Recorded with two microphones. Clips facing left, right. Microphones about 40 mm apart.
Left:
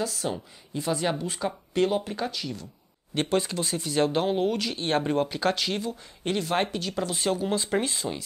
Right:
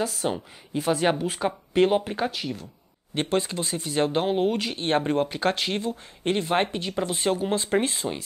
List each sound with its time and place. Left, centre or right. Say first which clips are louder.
0.0 s speech: right 3 dB; right
1.0 s speech: right 4 dB; right